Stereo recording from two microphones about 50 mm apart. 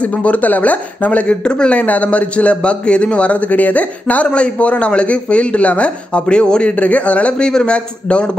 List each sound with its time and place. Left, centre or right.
0.0 s speech: left
6.7 s speech: left